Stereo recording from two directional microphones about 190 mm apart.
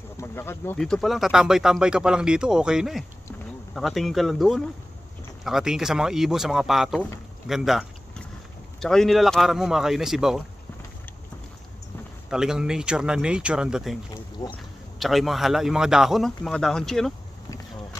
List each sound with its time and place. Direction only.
0.2 s speech: 10° left (ahead or behind)
7.4 s boat: centre (ahead or behind)
8.7 s speech: centre (ahead or behind)
12.3 s speech: 5° right (ahead or behind)
14.4 s speech: 15° left (ahead or behind)
15.0 s speech: centre (ahead or behind)